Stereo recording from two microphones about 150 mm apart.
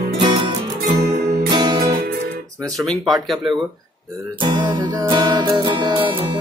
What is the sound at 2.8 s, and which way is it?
Speech, centre (ahead or behind).